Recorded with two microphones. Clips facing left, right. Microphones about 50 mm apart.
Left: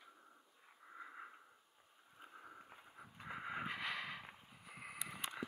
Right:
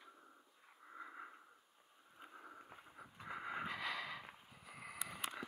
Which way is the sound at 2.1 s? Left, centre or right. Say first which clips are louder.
Right 1 dB; centre.